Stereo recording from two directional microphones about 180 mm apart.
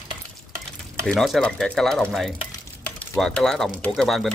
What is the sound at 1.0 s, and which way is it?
Speech, centre (ahead or behind).